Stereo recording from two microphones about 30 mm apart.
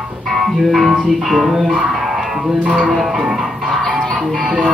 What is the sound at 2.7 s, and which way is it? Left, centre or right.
Music, right.